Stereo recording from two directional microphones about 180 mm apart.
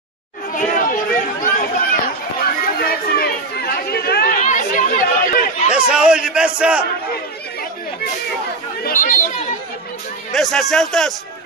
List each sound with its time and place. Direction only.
0.6 s chatter: 45° left (ahead or behind)
2.8 s chatter: 60° left (ahead or behind)
5.7 s a man's voice: 5° right (ahead or behind)
8.8 s chatter: 45° left (ahead or behind)
10.3 s a man's voice: centre (ahead or behind)